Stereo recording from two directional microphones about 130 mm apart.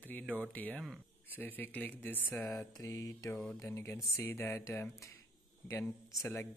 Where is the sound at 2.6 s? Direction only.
25° left (ahead or behind).